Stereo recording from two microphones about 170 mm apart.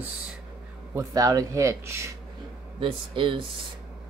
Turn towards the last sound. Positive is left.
turn(degrees=-30)  # may be behind; listen again after turning